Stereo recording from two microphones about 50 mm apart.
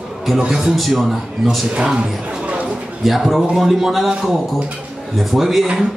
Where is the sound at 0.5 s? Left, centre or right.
Centre.